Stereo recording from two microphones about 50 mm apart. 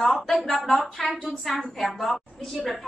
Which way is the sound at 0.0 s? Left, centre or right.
Centre.